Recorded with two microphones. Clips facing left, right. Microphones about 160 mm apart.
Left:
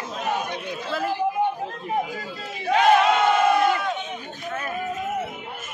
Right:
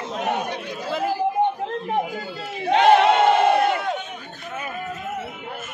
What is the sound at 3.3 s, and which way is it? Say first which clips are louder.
Crowd: right 2 dB; 30° right (ahead or behind).